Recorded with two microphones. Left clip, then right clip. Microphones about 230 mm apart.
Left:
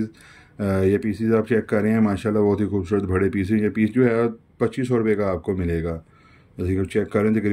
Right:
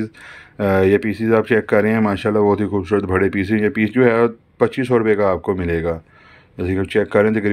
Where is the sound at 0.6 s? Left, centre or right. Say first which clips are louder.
Right 6 dB; centre.